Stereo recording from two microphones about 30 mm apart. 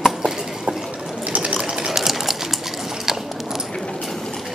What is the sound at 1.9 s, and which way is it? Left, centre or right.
Sewing machine, centre.